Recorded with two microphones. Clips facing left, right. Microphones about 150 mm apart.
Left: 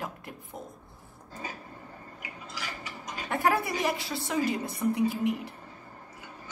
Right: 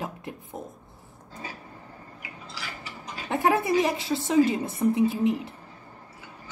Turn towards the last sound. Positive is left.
turn(degrees=-25)  # may be behind; listen again after turning